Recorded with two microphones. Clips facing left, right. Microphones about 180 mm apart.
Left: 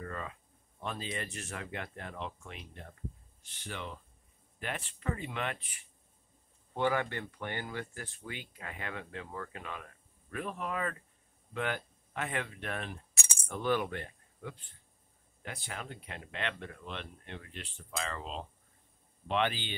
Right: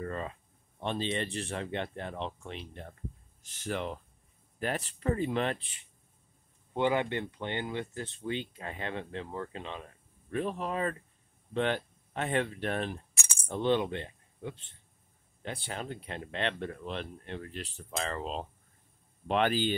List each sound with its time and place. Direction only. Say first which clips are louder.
0.0 s speech: right 5 dB; 30° right (ahead or behind)
3.4 s speech: right 8 dB; 40° right (ahead or behind)